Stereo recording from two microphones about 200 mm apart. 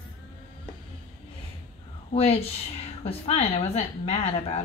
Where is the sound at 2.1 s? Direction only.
30° left (ahead or behind).